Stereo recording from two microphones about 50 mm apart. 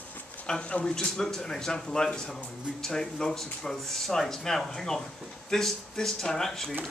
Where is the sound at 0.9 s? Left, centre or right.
Centre.